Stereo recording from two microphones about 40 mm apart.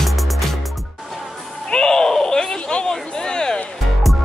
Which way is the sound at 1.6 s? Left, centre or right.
Left.